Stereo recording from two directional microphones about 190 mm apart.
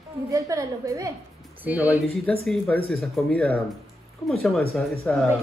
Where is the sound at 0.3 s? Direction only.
15° right (ahead or behind).